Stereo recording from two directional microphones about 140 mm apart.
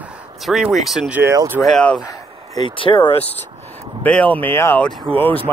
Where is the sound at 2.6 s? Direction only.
35° left (ahead or behind).